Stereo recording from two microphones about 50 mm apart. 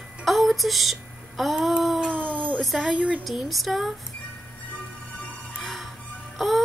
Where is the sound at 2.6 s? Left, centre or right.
Centre.